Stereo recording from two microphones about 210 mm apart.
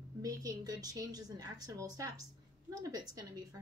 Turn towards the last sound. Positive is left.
turn(degrees=-15)  # may be behind; listen again after turning